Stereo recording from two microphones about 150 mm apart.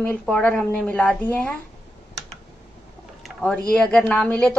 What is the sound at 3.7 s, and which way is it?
Speech, 5° left (ahead or behind).